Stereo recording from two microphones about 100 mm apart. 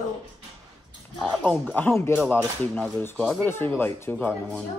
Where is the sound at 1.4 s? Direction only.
15° left (ahead or behind).